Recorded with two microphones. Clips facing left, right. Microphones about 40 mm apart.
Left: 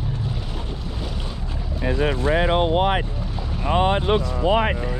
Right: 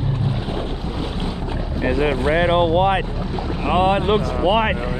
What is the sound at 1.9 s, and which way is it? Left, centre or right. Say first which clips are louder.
Speech: right 3 dB; right.